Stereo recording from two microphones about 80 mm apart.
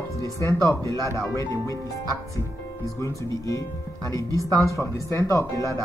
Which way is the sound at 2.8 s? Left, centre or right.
Left.